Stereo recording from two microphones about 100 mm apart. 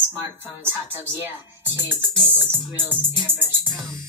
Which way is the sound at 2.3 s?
20° right (ahead or behind).